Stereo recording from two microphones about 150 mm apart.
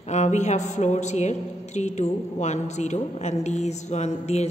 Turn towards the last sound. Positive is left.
turn(degrees=45)  # may be behind; listen again after turning